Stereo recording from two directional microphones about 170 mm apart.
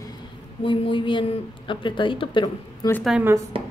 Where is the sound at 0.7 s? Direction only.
30° left (ahead or behind).